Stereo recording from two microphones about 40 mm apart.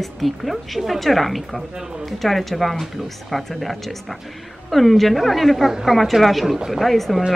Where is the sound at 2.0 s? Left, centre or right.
Centre.